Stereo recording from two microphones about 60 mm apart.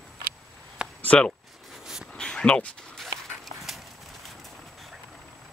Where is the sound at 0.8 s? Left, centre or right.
Centre.